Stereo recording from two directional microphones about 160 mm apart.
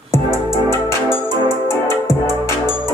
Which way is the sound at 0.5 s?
30° right (ahead or behind).